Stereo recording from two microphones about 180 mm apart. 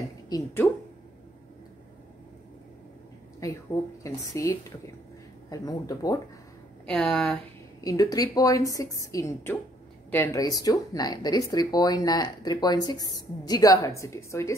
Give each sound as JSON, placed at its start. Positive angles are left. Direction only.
{"t": 0.3, "sound": "speech", "side_deg": 20}
{"t": 3.4, "sound": "a woman's voice", "side_deg": 20}
{"t": 6.9, "sound": "speech", "side_deg": 5}
{"t": 7.8, "sound": "speech", "side_deg": 20}